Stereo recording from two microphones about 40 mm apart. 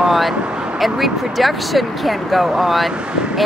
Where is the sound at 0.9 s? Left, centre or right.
Centre.